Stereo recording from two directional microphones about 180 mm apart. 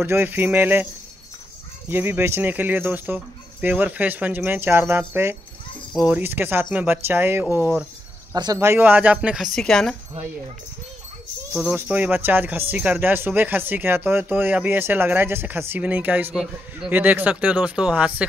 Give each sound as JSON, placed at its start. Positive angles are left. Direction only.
{"t": 0.0, "sound": "speech", "side_deg": -10}
{"t": 1.9, "sound": "speech", "side_deg": -10}
{"t": 11.5, "sound": "speech", "side_deg": -10}